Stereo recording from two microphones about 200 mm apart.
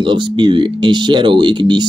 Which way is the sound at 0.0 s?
25° right (ahead or behind).